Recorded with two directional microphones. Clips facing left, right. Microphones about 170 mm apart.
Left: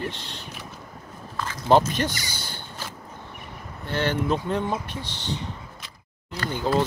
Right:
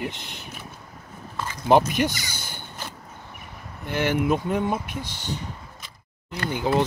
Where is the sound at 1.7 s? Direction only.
15° right (ahead or behind).